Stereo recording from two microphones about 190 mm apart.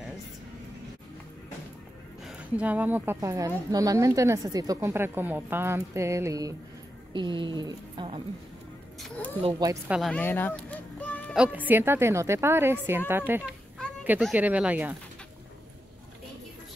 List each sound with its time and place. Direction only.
2.2 s a woman's voice: 5° right (ahead or behind); by 8.2 s 25° right (ahead or behind)
9.4 s speech: 25° right (ahead or behind)
9.8 s speech: 5° right (ahead or behind)
10.1 s a sound: 10° left (ahead or behind)
11.3 s a woman's voice: 5° right (ahead or behind)